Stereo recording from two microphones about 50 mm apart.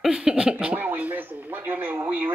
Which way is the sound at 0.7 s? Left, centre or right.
Right.